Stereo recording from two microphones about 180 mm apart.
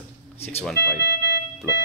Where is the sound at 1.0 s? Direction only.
75° left (ahead or behind).